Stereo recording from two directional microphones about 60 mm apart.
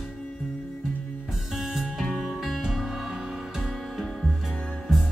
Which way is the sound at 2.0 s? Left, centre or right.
Centre.